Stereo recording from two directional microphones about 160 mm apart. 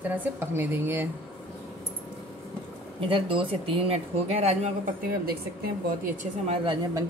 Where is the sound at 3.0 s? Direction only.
35° right (ahead or behind).